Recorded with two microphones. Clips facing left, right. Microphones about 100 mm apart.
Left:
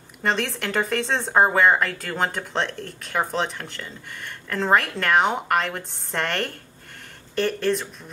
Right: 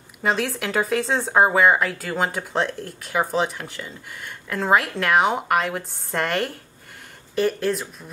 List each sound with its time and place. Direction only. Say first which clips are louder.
0.2 s speech: right 1 dB; 5° right (ahead or behind)